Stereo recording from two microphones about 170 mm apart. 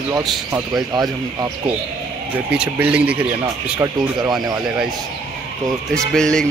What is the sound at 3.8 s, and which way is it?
Speech, 25° right (ahead or behind).